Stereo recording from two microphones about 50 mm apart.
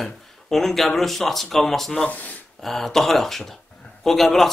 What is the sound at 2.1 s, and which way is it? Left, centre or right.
Speech, left.